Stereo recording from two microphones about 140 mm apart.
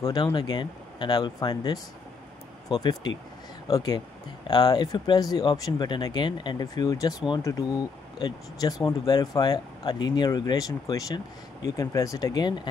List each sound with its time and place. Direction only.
0.0 s speech: 30° left (ahead or behind)